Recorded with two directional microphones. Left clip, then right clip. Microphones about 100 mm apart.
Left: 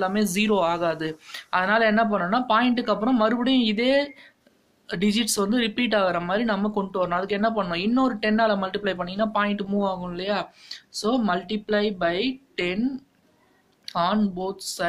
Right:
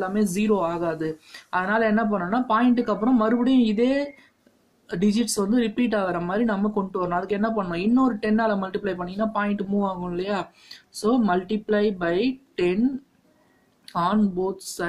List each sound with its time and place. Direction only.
0.0 s a woman's voice: 35° right (ahead or behind)
13.9 s speech: 50° right (ahead or behind)